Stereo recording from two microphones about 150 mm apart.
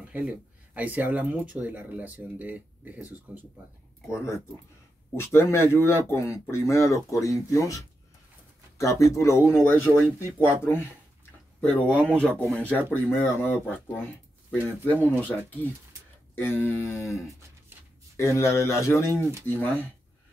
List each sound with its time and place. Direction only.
0.0 s speech: 10° right (ahead or behind)
5.1 s speech: 15° left (ahead or behind)
11.7 s speech: 10° right (ahead or behind)
12.4 s speech: 10° left (ahead or behind)
16.3 s speech: 15° left (ahead or behind)